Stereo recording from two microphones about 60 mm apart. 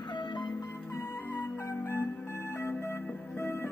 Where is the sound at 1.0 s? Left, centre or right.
Left.